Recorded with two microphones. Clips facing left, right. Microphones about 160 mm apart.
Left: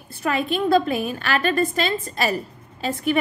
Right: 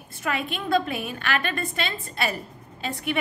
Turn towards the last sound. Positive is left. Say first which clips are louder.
# left 6 dB
turn(degrees=35)  # may be behind; listen again after turning